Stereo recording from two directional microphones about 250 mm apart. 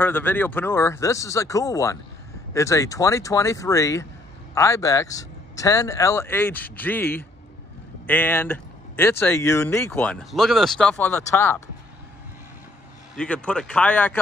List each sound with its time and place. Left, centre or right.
0.0 s speech: centre
13.1 s speech: centre